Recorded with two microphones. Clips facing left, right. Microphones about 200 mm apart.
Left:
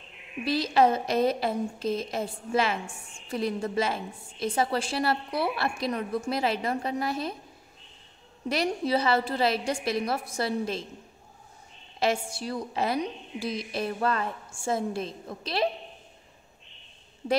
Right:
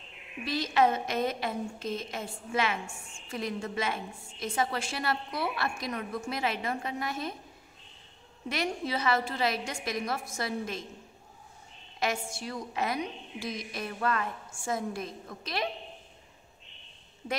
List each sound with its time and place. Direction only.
0.5 s a woman's voice: 35° left (ahead or behind)
8.5 s a woman's voice: 35° left (ahead or behind)
12.0 s a woman's voice: 30° left (ahead or behind)